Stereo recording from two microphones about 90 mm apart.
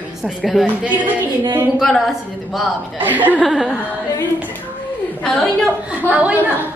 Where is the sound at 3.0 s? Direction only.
20° right (ahead or behind).